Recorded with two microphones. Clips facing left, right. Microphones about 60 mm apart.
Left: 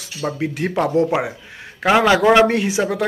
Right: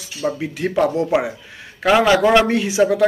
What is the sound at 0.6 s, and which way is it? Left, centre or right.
Speech, left.